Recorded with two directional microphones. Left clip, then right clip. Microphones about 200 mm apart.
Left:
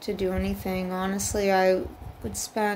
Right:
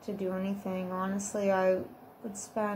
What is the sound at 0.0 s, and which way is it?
Speech, 50° left (ahead or behind).